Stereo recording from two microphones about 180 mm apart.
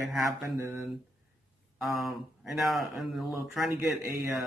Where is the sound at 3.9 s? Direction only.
15° right (ahead or behind).